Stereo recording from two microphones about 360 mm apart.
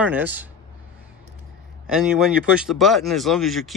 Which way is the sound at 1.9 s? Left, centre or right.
Centre.